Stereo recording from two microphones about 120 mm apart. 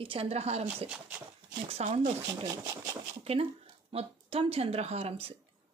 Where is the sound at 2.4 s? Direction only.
30° right (ahead or behind).